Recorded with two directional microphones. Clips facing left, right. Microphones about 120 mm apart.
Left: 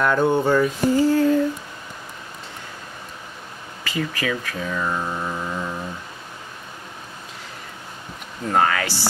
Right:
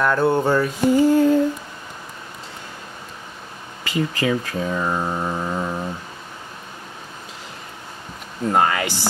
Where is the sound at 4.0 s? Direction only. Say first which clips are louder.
Right 4 dB; 30° right (ahead or behind).